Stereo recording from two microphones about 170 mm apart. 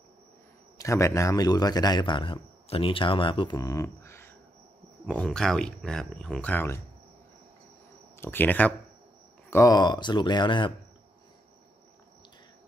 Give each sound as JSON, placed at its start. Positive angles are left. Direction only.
{"t": 0.7, "sound": "a man's voice", "side_deg": 15}
{"t": 8.2, "sound": "a man's voice", "side_deg": 10}